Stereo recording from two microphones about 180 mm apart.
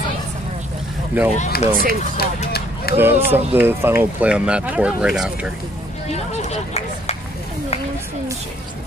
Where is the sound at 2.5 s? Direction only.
60° left (ahead or behind).